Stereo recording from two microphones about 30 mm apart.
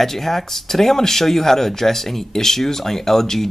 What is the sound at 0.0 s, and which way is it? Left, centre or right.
Speech, centre.